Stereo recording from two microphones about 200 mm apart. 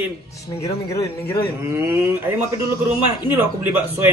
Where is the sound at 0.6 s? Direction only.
15° left (ahead or behind).